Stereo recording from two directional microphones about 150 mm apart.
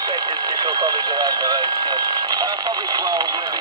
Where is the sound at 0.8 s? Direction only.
25° right (ahead or behind).